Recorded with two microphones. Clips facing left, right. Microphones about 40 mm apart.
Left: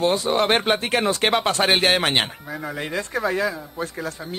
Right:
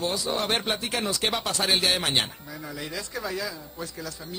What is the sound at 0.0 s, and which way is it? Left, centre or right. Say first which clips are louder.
Speech: left 8 dB; left.